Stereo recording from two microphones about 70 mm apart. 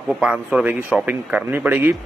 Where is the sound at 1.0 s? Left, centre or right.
Right.